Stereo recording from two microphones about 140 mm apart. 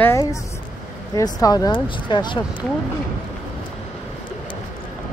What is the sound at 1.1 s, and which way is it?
Speech, 25° left (ahead or behind).